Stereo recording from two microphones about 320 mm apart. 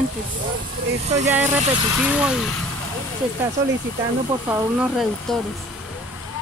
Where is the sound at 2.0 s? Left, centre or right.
Centre.